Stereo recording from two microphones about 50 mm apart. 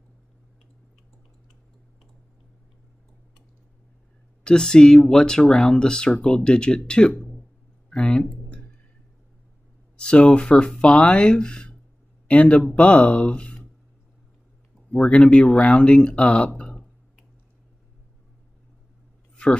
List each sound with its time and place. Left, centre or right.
4.5 s speech: centre
7.9 s clicking: centre
9.9 s speech: centre
15.0 s speech: left
19.4 s a sound: left